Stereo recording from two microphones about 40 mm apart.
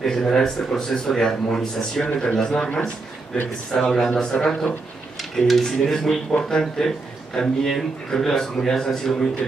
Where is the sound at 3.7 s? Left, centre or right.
Centre.